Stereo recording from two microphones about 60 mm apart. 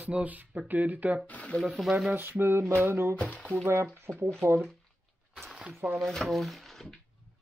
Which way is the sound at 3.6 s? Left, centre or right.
Right.